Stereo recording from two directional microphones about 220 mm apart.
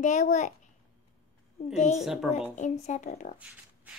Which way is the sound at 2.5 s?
35° left (ahead or behind).